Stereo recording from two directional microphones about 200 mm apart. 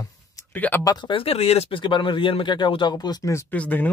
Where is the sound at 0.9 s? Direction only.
25° left (ahead or behind); by 3.9 s 10° left (ahead or behind).